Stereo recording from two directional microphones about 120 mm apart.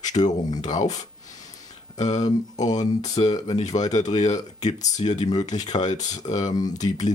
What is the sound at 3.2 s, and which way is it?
Speech, 40° left (ahead or behind).